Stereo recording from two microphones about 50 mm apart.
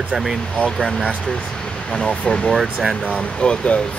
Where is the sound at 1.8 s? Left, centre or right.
Centre.